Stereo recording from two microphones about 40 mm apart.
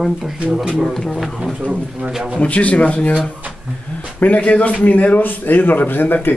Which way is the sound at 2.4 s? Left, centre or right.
Left.